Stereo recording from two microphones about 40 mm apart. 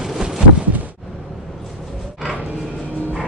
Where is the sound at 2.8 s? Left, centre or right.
Left.